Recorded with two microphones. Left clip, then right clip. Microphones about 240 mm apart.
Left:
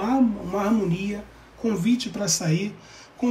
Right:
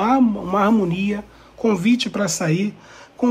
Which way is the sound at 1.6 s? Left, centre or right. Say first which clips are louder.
Right 6 dB; right.